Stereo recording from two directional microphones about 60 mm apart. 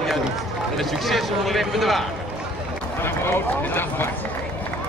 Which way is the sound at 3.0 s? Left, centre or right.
Left.